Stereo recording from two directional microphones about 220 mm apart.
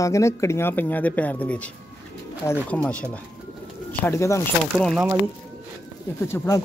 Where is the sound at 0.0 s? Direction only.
15° left (ahead or behind).